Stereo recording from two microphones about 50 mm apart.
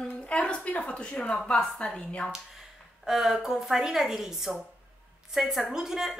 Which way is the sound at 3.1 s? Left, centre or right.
Centre.